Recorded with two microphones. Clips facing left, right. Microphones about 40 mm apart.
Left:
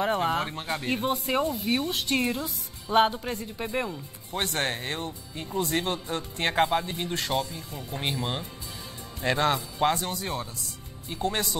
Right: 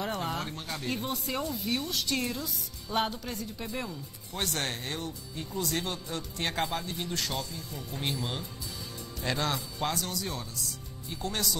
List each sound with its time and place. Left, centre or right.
0.0 s speech: left